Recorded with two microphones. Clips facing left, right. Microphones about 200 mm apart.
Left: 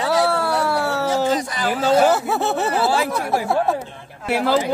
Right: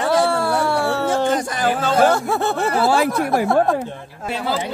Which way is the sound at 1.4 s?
50° right (ahead or behind).